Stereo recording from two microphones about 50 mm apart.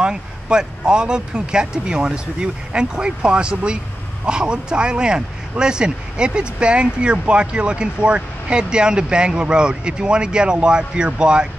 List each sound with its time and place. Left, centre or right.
0.0 s speech: centre